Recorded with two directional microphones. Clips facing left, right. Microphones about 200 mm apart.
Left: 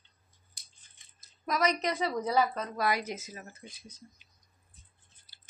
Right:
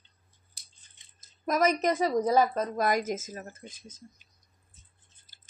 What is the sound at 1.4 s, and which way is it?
A woman's voice, 50° right (ahead or behind).